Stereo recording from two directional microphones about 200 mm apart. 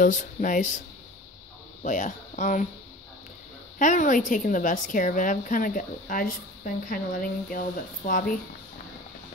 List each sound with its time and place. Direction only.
0.0 s a woman's voice: 40° left (ahead or behind)
1.8 s speech: 40° left (ahead or behind)
3.7 s a woman's voice: 40° left (ahead or behind)